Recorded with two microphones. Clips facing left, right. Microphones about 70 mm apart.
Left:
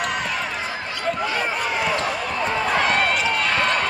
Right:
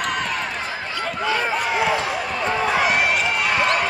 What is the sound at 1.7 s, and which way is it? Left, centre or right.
Basketball bounce, right.